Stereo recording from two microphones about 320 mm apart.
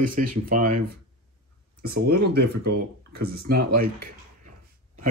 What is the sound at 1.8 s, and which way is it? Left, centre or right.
Speech, right.